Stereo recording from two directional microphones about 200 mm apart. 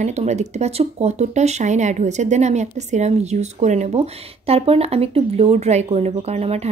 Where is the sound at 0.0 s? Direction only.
35° right (ahead or behind).